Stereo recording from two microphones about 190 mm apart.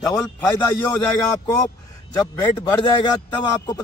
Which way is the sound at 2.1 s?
20° left (ahead or behind).